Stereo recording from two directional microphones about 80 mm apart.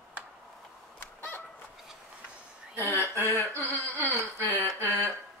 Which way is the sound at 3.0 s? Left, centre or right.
Right.